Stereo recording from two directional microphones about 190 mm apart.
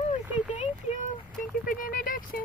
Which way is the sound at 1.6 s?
45° left (ahead or behind).